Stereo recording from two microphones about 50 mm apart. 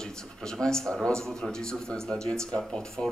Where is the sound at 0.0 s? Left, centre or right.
Centre.